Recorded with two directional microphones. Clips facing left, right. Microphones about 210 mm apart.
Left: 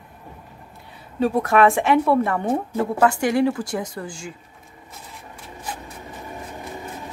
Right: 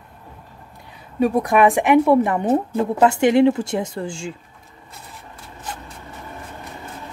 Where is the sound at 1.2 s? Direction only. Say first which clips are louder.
Right 1 dB; 15° right (ahead or behind).